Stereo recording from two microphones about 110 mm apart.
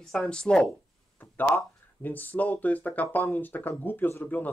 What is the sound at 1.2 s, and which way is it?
Speech, 20° left (ahead or behind).